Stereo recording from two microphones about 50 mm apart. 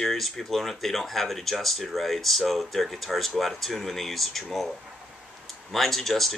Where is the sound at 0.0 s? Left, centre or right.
Centre.